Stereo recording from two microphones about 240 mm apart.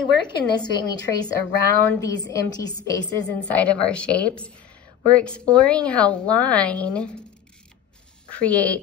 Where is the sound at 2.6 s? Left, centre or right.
Centre.